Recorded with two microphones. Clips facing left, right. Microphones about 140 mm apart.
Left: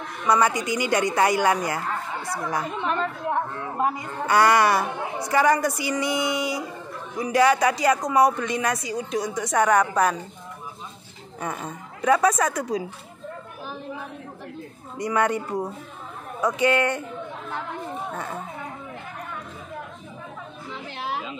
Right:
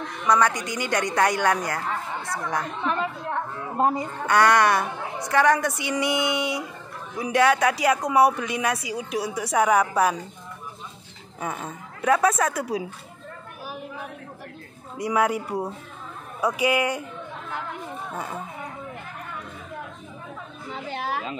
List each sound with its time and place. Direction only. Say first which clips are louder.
0.3 s a woman's voice: left 1 dB; 10° left (ahead or behind)
4.3 s speech: even; 5° left (ahead or behind)
11.4 s speech: even; centre (ahead or behind)
15.0 s speech: even; 5° right (ahead or behind)
18.1 s speech: even; 10° right (ahead or behind)
20.9 s a sound: right 2 dB; 50° right (ahead or behind)